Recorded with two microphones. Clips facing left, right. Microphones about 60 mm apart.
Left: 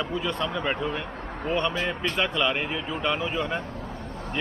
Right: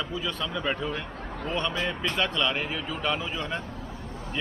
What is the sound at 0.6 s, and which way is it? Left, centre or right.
Speech, centre.